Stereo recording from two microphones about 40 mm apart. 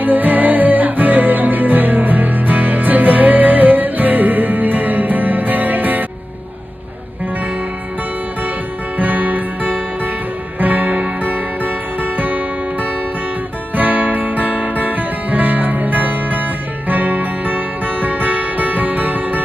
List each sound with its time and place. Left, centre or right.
0.0 s music: right
8.9 s music: right
13.7 s music: right